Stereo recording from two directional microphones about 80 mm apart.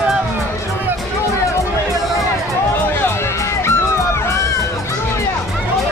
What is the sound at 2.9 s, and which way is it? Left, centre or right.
Music, left.